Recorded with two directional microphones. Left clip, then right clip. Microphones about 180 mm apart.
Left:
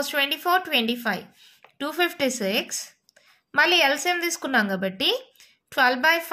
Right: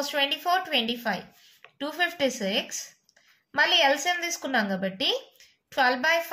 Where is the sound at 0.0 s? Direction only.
40° left (ahead or behind).